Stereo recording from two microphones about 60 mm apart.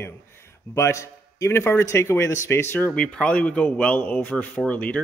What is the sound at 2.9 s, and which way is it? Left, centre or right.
A man's voice, centre.